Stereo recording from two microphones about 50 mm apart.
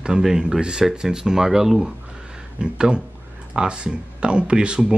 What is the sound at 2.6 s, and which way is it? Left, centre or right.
Speech, centre.